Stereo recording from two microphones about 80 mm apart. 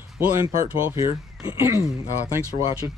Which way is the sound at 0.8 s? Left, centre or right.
Right.